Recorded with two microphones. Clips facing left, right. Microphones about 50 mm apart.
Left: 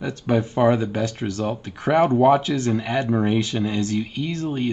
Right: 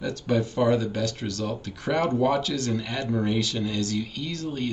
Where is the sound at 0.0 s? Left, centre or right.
Left.